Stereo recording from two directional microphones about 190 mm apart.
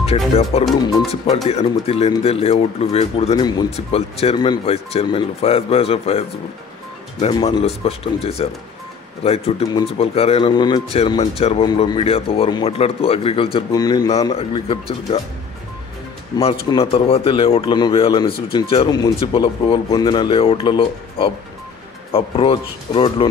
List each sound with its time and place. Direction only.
0.4 s a man's voice: 30° left (ahead or behind)
14.3 s a man's voice: 30° left (ahead or behind)
16.3 s a man's voice: 25° left (ahead or behind)